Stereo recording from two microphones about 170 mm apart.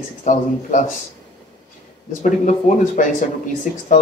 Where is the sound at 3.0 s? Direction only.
50° left (ahead or behind).